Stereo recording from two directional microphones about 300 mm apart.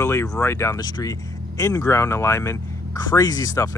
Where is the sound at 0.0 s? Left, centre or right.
Centre.